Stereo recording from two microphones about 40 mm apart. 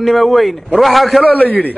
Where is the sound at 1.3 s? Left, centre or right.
Left.